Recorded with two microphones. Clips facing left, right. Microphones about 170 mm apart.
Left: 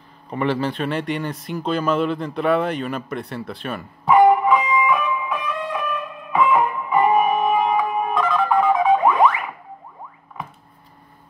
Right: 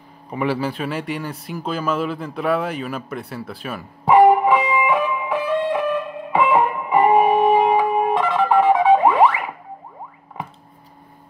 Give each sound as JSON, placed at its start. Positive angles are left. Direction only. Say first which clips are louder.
{"t": 0.3, "sound": "speech", "louder": "even", "side_deg": -5}
{"t": 4.0, "sound": "music", "louder": "right 2 dB", "side_deg": -30}